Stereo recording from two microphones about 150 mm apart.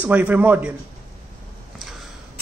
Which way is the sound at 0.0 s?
10° right (ahead or behind).